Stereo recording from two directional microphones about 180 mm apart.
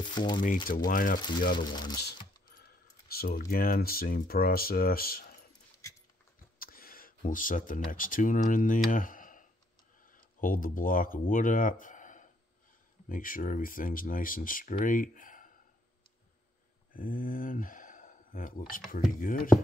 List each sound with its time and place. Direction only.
0.1 s speech: 25° left (ahead or behind)
0.8 s speech: 50° left (ahead or behind)
1.6 s speech: 25° left (ahead or behind)
2.0 s speech: 60° left (ahead or behind)
6.6 s speech: 55° left (ahead or behind)
16.9 s speech: 50° left (ahead or behind)